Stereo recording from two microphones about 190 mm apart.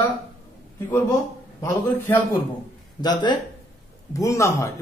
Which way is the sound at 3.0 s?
25° left (ahead or behind).